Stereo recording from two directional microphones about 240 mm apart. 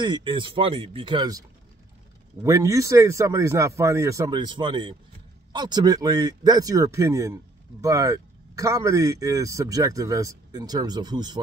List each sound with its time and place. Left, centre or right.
0.0 s speech: centre
2.4 s a man's voice: centre